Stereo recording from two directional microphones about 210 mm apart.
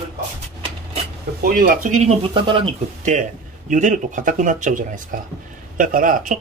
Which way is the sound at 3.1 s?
35° right (ahead or behind).